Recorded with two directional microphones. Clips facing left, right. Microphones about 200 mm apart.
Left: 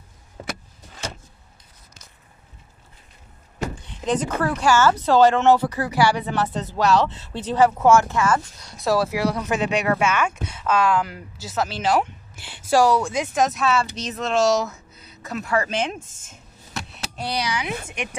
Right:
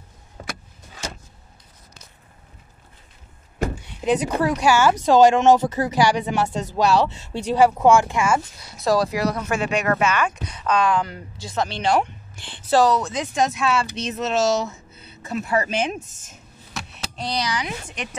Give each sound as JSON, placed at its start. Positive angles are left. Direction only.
{"t": 3.7, "sound": "a woman's voice", "side_deg": -10}
{"t": 16.1, "sound": "speech", "side_deg": 25}
{"t": 16.7, "sound": "a sound", "side_deg": 5}
{"t": 17.8, "sound": "a woman's voice", "side_deg": 10}